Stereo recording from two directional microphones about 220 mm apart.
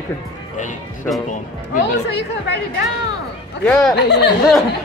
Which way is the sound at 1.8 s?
50° left (ahead or behind).